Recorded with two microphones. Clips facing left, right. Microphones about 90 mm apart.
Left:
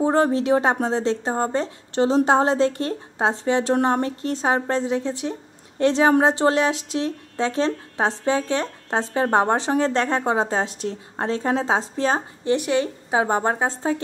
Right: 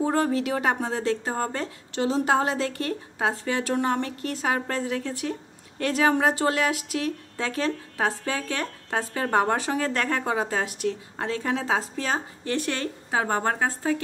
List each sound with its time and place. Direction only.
0.0 s speech: 30° left (ahead or behind)
12.5 s speech: 15° left (ahead or behind)